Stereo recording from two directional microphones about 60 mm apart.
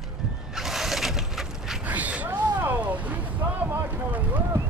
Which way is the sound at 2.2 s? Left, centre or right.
Right.